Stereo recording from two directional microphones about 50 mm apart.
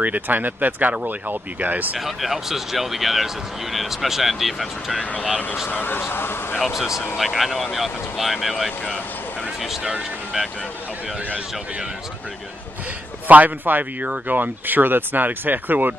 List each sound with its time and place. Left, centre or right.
0.0 s speech: right
2.0 s speech: centre
5.7 s speech: left
7.2 s speech: centre
13.3 s speech: right